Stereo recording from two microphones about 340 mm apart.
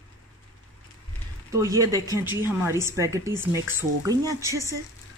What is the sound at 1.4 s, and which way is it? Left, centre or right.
Speech, centre.